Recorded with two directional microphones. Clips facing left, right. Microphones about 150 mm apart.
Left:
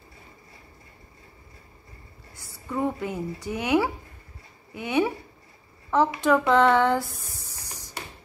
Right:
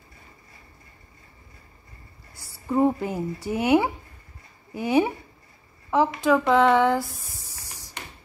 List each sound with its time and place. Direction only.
2.3 s speech: 30° right (ahead or behind)
5.9 s speech: 5° right (ahead or behind)